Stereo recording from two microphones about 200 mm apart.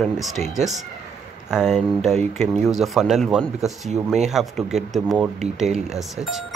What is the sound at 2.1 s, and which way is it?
Speech, 35° right (ahead or behind).